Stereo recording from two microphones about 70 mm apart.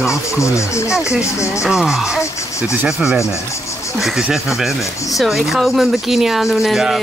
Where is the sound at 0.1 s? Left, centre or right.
Left.